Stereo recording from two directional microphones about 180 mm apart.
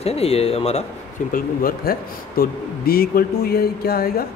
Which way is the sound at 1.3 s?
55° left (ahead or behind).